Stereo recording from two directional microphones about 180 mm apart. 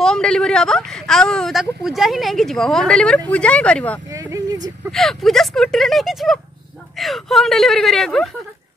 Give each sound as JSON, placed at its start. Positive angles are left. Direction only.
{"t": 0.0, "sound": "speech", "side_deg": 5}
{"t": 4.1, "sound": "vehicle", "side_deg": -15}
{"t": 4.9, "sound": "speech", "side_deg": 0}